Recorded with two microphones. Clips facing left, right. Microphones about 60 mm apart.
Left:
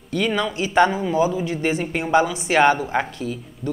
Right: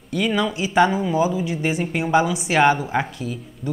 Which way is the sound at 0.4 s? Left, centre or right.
Centre.